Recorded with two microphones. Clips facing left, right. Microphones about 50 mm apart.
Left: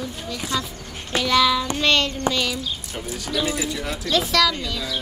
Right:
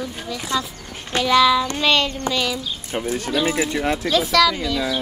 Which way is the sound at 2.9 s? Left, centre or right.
Right.